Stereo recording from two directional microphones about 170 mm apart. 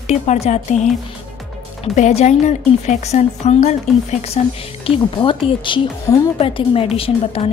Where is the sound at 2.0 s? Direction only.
40° left (ahead or behind).